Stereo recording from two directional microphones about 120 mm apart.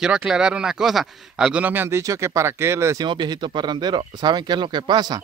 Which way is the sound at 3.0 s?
40° right (ahead or behind).